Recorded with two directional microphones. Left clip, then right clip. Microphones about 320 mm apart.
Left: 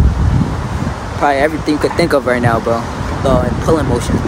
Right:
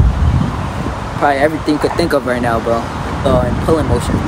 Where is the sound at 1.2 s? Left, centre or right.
Centre.